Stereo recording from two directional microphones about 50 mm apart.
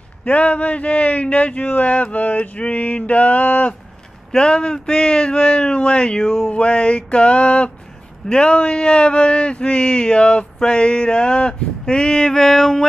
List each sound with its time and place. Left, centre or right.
0.2 s speech: left
4.3 s speech: centre